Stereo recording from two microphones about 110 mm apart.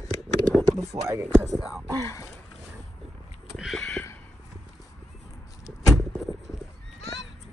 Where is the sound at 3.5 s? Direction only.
Centre (ahead or behind).